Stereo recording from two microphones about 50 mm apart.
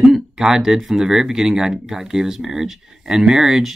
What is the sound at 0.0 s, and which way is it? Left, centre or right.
Speech, centre.